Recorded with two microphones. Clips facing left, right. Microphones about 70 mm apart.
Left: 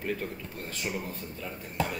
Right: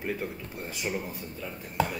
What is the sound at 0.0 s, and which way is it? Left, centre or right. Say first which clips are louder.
Speech: even; centre.